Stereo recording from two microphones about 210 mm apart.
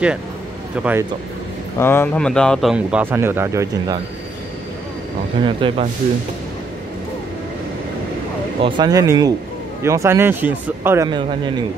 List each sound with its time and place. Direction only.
0.8 s speech: 5° right (ahead or behind)
1.8 s speech: 10° left (ahead or behind); by 4.0 s 15° right (ahead or behind)
5.4 s speech: 25° right (ahead or behind)
8.5 s a man's voice: 25° right (ahead or behind)